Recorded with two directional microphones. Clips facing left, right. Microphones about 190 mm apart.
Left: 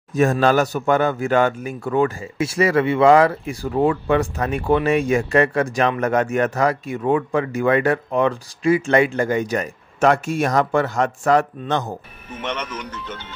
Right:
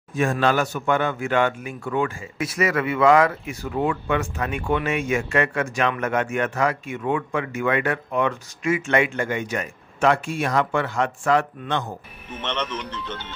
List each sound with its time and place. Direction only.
0.1 s speech: 40° left (ahead or behind)
12.4 s speech: 10° left (ahead or behind)